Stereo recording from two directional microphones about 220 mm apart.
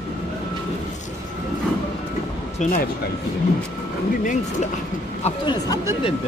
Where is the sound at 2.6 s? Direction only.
35° left (ahead or behind).